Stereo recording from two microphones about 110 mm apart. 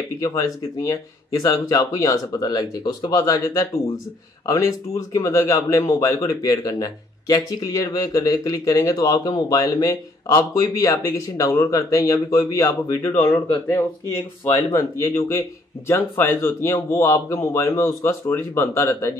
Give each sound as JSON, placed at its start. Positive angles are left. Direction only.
{"t": 0.2, "sound": "a man's voice", "side_deg": 30}
{"t": 14.7, "sound": "a man's voice", "side_deg": 25}